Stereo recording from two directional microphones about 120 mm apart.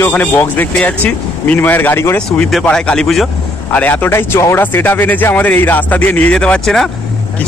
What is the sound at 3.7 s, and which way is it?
Speech, 15° left (ahead or behind).